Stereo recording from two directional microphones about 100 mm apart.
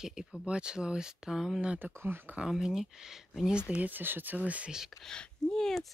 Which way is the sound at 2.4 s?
5° right (ahead or behind).